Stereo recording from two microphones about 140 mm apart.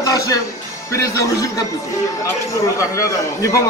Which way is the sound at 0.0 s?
25° left (ahead or behind).